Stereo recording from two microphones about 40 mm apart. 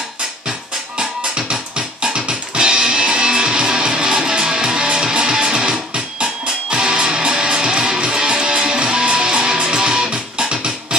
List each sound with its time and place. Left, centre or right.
0.5 s music: right